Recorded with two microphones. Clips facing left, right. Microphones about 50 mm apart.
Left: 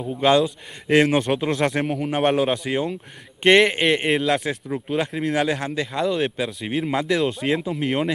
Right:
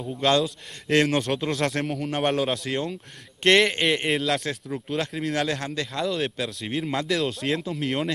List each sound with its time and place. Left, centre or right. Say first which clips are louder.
0.0 s a man's voice: left 4 dB; centre